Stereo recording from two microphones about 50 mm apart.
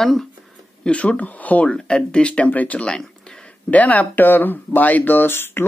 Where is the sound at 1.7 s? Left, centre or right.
Centre.